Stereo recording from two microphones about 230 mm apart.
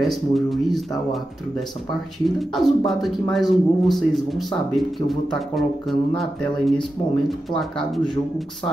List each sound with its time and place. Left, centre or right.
0.0 s speech: centre
2.5 s speech: centre